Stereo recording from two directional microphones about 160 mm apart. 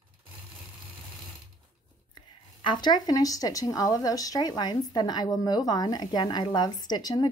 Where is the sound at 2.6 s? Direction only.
30° left (ahead or behind).